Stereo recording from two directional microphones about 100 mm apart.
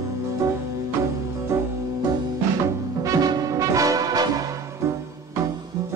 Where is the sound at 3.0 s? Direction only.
35° right (ahead or behind).